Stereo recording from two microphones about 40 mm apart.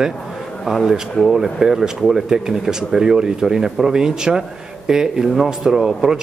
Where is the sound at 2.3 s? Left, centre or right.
Centre.